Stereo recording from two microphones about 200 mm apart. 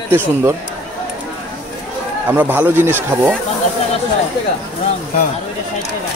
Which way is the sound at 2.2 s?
10° right (ahead or behind).